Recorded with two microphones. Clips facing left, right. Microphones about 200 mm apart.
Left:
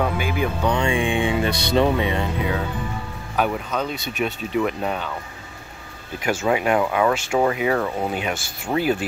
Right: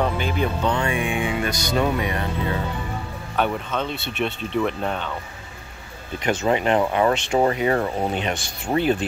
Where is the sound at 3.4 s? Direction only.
5° left (ahead or behind).